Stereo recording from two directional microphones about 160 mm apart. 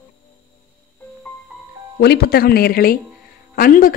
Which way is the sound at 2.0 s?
80° left.